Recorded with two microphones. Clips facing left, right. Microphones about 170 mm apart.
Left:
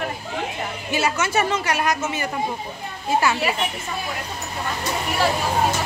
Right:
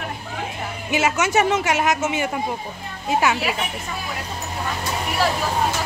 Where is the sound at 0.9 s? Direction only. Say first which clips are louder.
Right 3 dB; 20° right (ahead or behind).